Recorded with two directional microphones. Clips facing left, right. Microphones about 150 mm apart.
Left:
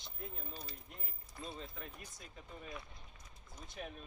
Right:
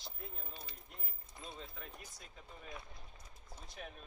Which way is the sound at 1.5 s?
Centre (ahead or behind).